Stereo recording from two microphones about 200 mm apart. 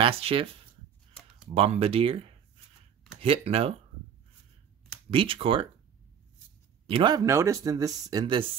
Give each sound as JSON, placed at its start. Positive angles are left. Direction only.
{"t": 0.0, "sound": "speech", "side_deg": -30}
{"t": 1.5, "sound": "speech", "side_deg": -30}
{"t": 5.1, "sound": "speech", "side_deg": -25}
{"t": 6.9, "sound": "speech", "side_deg": -25}